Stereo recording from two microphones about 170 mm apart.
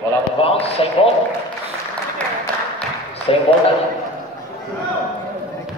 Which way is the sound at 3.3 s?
35° left (ahead or behind).